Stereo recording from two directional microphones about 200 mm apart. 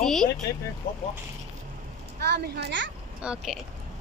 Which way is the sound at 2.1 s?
55° right (ahead or behind).